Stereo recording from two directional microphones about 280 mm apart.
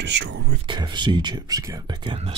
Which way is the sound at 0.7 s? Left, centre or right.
Centre.